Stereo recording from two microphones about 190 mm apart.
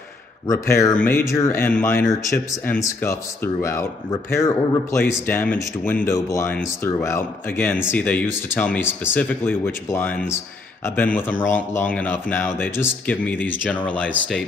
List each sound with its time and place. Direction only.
0.5 s speech: 15° left (ahead or behind)